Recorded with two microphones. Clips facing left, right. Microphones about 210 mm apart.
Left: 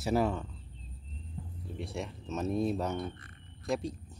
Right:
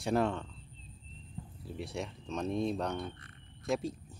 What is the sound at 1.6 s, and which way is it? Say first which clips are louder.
Speech: even; centre (ahead or behind).